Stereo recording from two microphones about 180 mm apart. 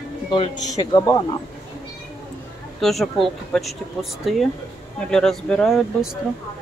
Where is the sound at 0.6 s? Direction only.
20° left (ahead or behind).